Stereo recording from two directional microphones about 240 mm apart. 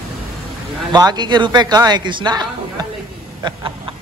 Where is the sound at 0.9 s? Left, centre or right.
Centre.